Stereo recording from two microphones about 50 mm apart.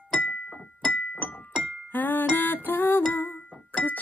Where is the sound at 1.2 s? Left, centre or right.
Left.